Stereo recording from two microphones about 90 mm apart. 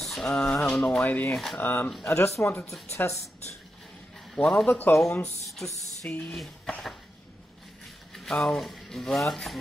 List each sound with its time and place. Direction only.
0.0 s a sound: 5° left (ahead or behind)
1.0 s speech: 15° left (ahead or behind)
1.3 s speech: centre (ahead or behind)
1.6 s speech: 20° left (ahead or behind)
4.4 s speech: 10° left (ahead or behind)
4.6 s speech: 20° left (ahead or behind)
5.2 s speech: 5° left (ahead or behind)
6.0 s speech: 15° left (ahead or behind)
6.3 s speech: centre (ahead or behind)
8.1 s speech: 5° left (ahead or behind)